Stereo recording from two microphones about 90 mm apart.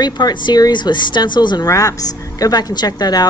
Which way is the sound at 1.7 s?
40° left (ahead or behind).